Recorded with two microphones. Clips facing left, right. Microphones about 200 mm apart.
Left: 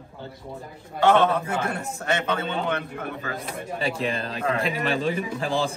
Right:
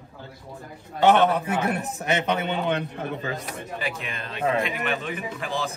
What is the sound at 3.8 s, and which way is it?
A man's voice, 30° left (ahead or behind).